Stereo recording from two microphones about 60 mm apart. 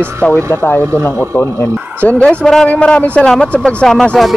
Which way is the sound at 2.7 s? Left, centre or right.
Left.